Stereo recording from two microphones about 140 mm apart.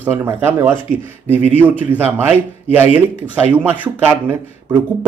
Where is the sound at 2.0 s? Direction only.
15° right (ahead or behind).